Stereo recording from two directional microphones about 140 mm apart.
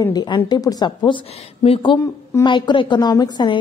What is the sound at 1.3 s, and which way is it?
A woman's voice, 45° left (ahead or behind).